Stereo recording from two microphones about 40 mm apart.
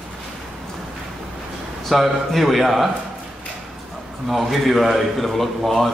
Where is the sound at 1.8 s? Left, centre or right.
Centre.